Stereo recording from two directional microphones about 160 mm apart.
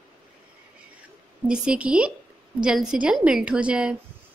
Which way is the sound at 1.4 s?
5° right (ahead or behind).